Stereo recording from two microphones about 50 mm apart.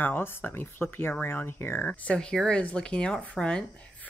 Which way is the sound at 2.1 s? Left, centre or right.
Centre.